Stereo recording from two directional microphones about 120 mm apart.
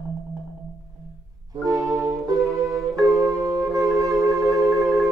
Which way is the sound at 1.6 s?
30° right (ahead or behind).